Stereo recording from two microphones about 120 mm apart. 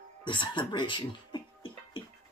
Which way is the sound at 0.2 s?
40° left (ahead or behind).